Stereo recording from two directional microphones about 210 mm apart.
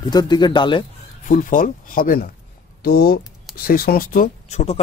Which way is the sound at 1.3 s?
40° left (ahead or behind).